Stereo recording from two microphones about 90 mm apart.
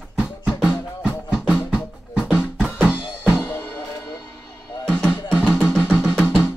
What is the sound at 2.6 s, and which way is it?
Drum, 5° right (ahead or behind).